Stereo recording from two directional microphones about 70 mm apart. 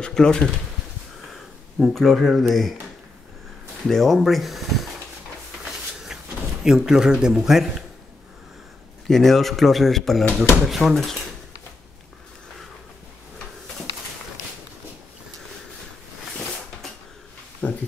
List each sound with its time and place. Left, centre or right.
0.0 s speech: centre
1.3 s speech: centre
3.8 s speech: centre
5.6 s a sound: centre
6.6 s a man's voice: centre
9.0 s speech: centre
17.6 s a sound: centre